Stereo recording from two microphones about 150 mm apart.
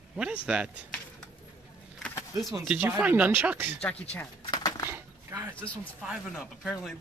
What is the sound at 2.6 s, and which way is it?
Speech, 10° right (ahead or behind).